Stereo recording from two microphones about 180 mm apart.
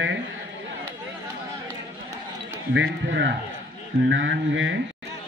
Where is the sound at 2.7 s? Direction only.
85° right.